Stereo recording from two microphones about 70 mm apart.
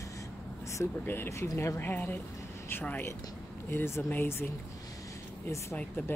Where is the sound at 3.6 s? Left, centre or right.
Left.